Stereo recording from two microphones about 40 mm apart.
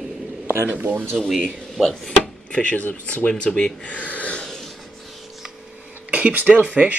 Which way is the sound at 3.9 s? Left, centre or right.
Left.